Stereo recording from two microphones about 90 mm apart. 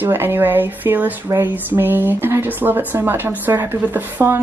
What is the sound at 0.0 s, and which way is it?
Speech, 25° right (ahead or behind).